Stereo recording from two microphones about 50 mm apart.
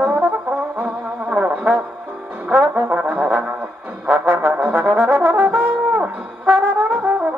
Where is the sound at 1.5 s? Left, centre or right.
Centre.